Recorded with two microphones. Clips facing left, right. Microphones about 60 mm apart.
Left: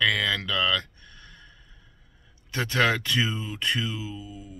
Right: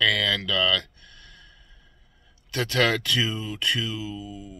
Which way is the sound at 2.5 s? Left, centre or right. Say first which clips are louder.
Right 1 dB; left.